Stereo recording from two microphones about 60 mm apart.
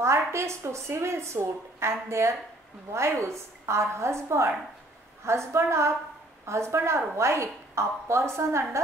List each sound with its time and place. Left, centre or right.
0.3 s a woman's voice: right